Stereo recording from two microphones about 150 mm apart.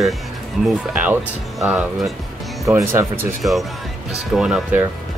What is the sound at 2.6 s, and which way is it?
Speech, 20° right (ahead or behind).